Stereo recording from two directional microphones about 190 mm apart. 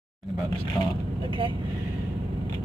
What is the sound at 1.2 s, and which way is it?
Speech, 25° right (ahead or behind).